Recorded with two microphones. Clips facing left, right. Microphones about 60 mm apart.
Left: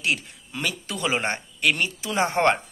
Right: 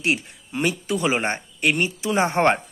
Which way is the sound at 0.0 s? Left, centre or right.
Right.